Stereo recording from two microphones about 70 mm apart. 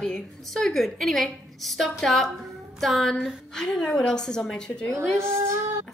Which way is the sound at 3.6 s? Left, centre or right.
Centre.